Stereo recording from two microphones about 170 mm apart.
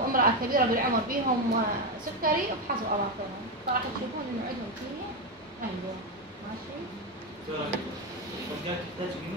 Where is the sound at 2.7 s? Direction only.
55° right (ahead or behind).